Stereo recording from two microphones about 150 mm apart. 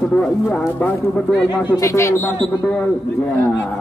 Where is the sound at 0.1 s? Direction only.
10° left (ahead or behind).